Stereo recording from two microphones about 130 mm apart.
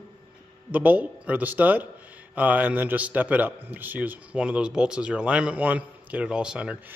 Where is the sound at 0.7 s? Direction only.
10° right (ahead or behind).